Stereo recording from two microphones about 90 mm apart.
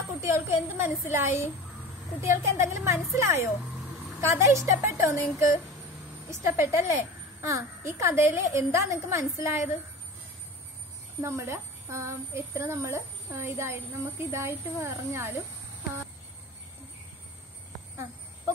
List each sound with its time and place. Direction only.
0.2 s a woman's voice: 30° right (ahead or behind)
6.4 s a woman's voice: 30° right (ahead or behind)
11.1 s a woman's voice: 30° right (ahead or behind)